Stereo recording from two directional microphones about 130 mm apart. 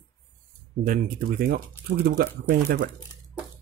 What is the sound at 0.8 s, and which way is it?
Speech, 90° right.